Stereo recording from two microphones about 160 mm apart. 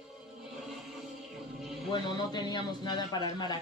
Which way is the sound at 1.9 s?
30° left (ahead or behind).